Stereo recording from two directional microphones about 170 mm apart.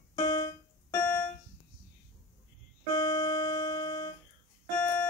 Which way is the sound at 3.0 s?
20° left (ahead or behind).